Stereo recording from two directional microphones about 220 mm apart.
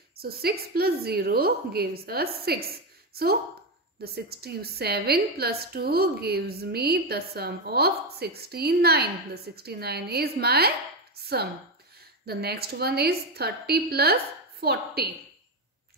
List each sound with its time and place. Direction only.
0.1 s a woman's voice: 45° right (ahead or behind)
3.1 s a sound: 45° right (ahead or behind)
4.0 s a woman's voice: 45° right (ahead or behind)